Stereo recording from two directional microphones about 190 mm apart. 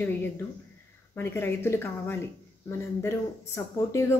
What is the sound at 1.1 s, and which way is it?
A woman's voice, 10° left (ahead or behind).